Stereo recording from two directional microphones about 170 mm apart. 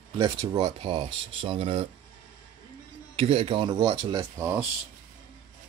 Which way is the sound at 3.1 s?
35° right (ahead or behind).